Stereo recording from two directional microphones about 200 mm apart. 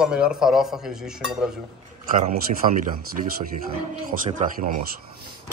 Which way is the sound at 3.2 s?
35° right (ahead or behind).